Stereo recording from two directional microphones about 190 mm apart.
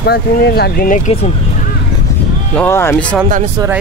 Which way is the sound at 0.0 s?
55° left (ahead or behind).